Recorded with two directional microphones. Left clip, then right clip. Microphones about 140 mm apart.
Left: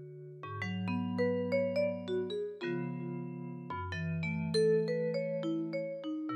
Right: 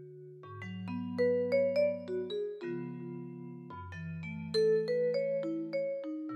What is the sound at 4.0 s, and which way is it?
Music, 30° left (ahead or behind).